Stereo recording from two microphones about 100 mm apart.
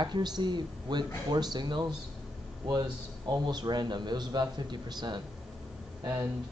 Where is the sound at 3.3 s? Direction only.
45° right (ahead or behind).